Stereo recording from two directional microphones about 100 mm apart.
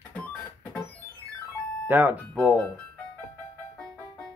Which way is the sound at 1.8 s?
20° right (ahead or behind).